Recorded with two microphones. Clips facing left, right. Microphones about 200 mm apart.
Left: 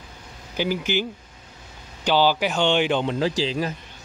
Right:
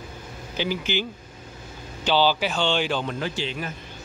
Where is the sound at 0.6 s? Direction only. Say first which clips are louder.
Left 3 dB; 10° left (ahead or behind).